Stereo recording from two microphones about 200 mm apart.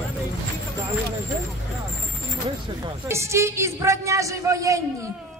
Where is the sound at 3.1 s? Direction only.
15° right (ahead or behind).